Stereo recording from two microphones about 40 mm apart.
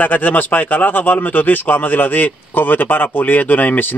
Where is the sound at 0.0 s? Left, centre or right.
Left.